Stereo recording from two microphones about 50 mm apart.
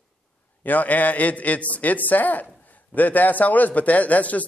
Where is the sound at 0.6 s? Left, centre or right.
Left.